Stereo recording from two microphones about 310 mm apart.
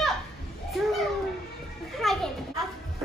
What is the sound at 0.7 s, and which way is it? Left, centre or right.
Children playing, centre.